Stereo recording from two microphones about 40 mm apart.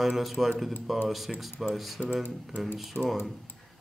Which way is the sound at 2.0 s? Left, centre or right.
Centre.